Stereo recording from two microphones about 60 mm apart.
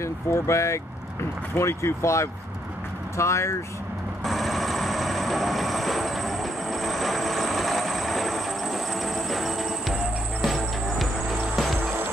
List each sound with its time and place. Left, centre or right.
0.0 s speech: left
4.2 s vehicle: centre
10.4 s cricket: centre
11.5 s music: centre